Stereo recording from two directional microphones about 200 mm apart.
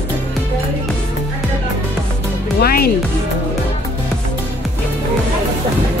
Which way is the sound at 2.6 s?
50° left (ahead or behind).